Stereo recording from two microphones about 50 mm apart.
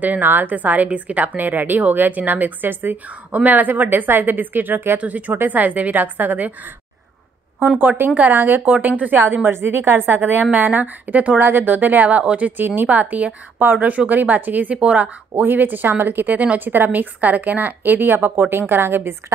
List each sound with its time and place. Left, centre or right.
0.0 s a woman's voice: right
5.0 s a woman's voice: right
7.6 s a woman's voice: right
8.4 s a woman's voice: right
8.6 s a woman's voice: right
9.1 s a woman's voice: right
11.3 s a woman's voice: right
15.4 s a woman's voice: right